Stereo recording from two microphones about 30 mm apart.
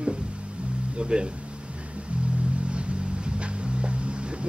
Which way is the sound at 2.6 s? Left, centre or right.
Right.